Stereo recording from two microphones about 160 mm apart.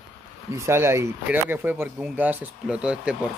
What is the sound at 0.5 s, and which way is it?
Speech, 15° right (ahead or behind).